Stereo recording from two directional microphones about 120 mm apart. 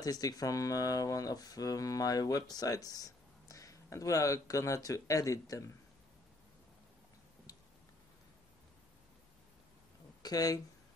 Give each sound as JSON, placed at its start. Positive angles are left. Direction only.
{"t": 0.0, "sound": "speech", "side_deg": 30}
{"t": 10.2, "sound": "speech", "side_deg": 30}